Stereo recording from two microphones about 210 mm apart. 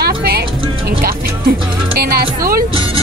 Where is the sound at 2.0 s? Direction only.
45° right (ahead or behind).